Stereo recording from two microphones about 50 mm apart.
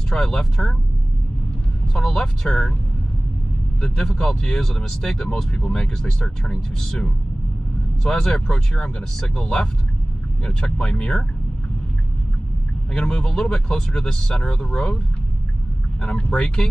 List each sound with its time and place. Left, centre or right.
0.1 s speech: centre
2.0 s speech: centre
3.8 s speech: centre
12.9 s speech: centre
16.0 s speech: centre